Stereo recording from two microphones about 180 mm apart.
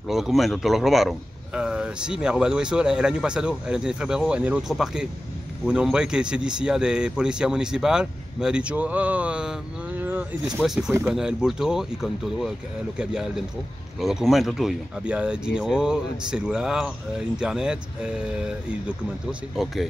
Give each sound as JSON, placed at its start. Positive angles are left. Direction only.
{"t": 0.1, "sound": "speech", "side_deg": 0}
{"t": 19.5, "sound": "speech", "side_deg": 0}